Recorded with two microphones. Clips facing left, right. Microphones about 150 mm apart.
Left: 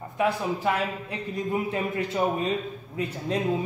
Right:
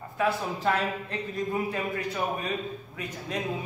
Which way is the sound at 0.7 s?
10° left (ahead or behind).